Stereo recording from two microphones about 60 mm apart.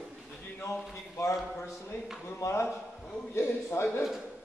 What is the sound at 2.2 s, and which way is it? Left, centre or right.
A man's voice, left.